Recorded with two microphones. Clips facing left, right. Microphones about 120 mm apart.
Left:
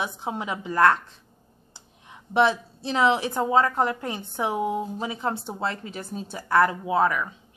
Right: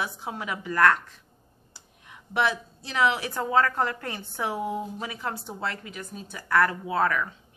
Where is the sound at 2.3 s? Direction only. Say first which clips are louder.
Left 5 dB; 25° left (ahead or behind).